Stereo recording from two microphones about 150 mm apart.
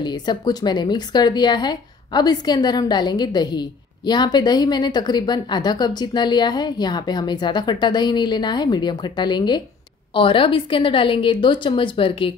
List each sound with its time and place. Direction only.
0.0 s a woman's voice: 30° left (ahead or behind)